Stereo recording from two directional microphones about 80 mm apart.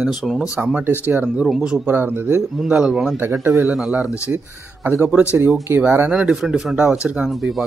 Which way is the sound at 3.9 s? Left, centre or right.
Centre.